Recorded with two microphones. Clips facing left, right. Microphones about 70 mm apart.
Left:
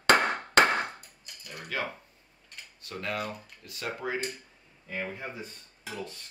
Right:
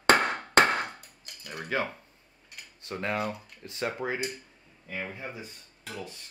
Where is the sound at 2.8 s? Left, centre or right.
Right.